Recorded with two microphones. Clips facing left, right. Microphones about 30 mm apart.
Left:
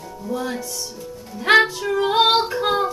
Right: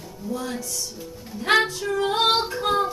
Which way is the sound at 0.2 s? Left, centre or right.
Centre.